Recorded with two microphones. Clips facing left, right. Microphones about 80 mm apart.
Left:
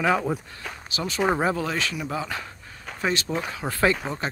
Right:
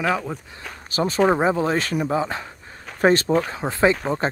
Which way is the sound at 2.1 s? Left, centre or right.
Right.